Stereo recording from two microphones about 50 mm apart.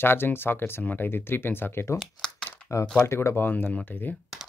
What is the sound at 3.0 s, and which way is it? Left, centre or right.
Speech, left.